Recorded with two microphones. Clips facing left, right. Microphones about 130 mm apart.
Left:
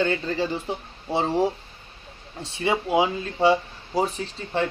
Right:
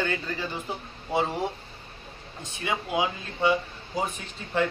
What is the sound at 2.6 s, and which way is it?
Speech, 30° left (ahead or behind).